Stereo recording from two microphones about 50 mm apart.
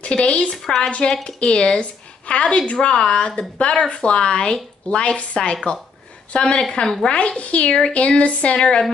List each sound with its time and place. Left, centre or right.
0.0 s a woman's voice: left
7.2 s a woman's voice: left